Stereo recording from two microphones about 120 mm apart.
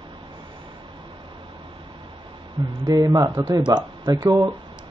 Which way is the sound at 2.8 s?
35° right (ahead or behind).